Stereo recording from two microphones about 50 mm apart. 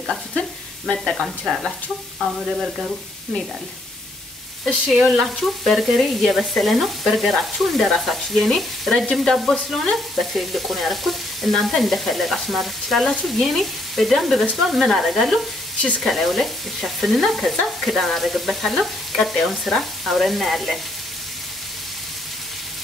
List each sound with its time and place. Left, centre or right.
0.0 s speech: centre
0.4 s sizzle: centre
1.1 s speech: centre
4.9 s stir: centre